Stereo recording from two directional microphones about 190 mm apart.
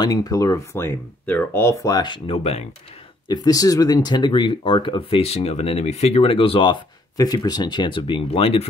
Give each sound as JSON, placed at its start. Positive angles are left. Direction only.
{"t": 0.0, "sound": "speech", "side_deg": 20}
{"t": 3.3, "sound": "speech", "side_deg": 20}